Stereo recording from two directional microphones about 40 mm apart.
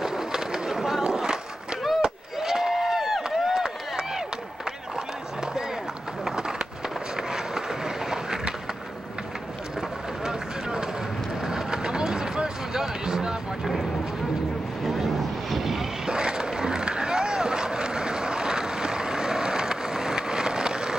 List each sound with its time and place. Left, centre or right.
0.0 s skateboard: centre
2.0 s a sound: centre
6.2 s run: centre
7.2 s a sound: centre
9.8 s run: centre
15.5 s vehicle: centre
16.1 s skateboard: centre